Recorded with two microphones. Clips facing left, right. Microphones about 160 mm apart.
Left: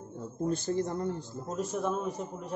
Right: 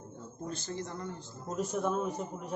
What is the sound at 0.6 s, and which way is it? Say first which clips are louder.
Speech: left 8 dB; 50° left (ahead or behind).